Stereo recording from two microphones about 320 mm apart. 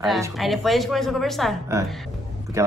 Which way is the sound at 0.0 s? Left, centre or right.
Centre.